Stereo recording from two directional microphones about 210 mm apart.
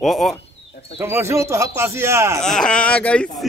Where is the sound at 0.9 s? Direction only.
10° right (ahead or behind).